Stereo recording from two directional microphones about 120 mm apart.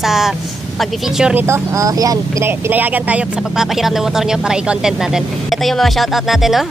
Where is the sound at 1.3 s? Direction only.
20° right (ahead or behind).